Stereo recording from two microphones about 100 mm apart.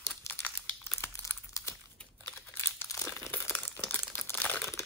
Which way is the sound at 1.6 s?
30° left (ahead or behind).